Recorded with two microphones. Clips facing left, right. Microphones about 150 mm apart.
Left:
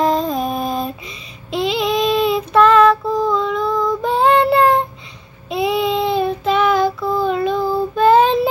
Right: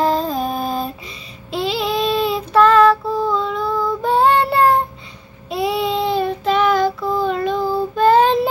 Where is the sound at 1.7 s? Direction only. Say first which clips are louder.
Left 2 dB; 35° right (ahead or behind).